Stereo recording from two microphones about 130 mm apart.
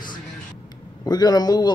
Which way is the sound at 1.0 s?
30° left (ahead or behind).